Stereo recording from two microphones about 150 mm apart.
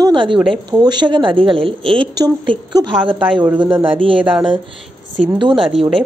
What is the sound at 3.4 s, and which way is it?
Speech, 10° right (ahead or behind).